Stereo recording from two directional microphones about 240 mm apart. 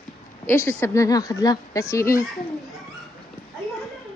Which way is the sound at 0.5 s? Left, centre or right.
Centre.